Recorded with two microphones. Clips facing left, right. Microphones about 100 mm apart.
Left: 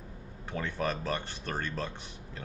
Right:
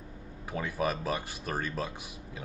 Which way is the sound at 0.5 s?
10° right (ahead or behind).